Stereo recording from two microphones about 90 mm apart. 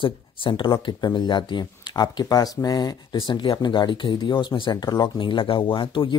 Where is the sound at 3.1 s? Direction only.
65° left (ahead or behind).